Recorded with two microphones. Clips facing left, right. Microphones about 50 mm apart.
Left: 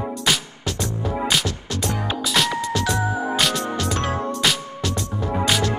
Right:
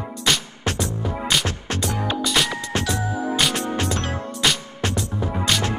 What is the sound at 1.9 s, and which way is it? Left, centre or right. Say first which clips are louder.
Music: even; centre.